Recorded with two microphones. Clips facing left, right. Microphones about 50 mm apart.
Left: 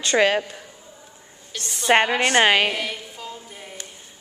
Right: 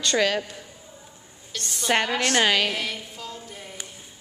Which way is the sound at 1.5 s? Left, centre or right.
Centre.